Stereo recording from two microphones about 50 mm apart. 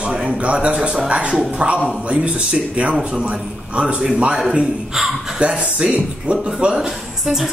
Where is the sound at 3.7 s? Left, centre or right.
Right.